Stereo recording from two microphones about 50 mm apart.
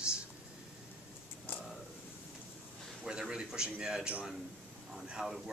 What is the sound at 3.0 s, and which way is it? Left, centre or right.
Speech, centre.